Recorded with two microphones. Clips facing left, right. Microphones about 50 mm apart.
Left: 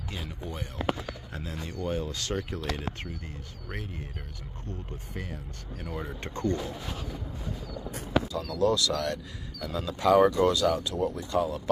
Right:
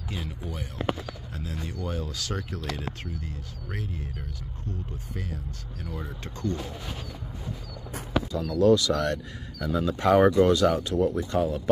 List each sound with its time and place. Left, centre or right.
0.1 s speech: centre
1.3 s speech: left
5.1 s speech: centre
6.2 s speech: left
7.9 s a sound: right
8.5 s speech: right